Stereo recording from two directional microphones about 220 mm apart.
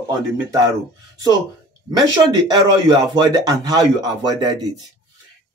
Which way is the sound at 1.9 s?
15° right (ahead or behind).